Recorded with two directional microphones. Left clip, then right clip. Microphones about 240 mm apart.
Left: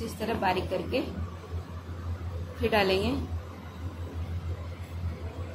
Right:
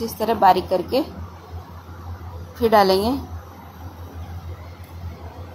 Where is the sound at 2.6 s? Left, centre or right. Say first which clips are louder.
Right 10 dB; right.